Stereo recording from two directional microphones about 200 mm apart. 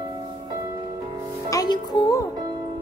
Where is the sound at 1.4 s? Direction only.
20° left (ahead or behind).